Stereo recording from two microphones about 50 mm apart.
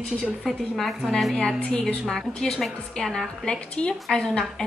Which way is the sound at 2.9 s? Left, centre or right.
Centre.